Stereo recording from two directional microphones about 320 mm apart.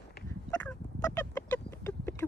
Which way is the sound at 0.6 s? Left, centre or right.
Centre.